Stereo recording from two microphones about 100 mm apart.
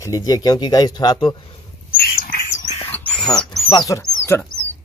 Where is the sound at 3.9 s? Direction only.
25° left (ahead or behind).